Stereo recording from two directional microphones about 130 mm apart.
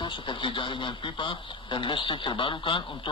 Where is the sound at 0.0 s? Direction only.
35° left (ahead or behind).